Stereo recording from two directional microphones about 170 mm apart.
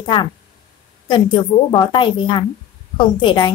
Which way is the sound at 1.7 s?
30° left (ahead or behind).